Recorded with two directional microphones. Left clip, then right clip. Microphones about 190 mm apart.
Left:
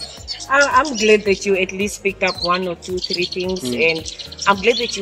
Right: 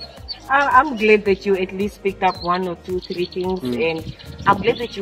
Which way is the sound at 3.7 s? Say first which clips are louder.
Left 4 dB; 5° right (ahead or behind).